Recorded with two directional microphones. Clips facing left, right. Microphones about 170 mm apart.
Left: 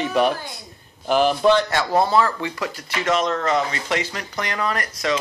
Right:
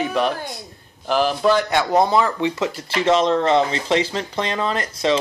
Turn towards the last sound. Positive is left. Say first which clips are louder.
# right 3 dB
turn(degrees=-25)  # may be behind; listen again after turning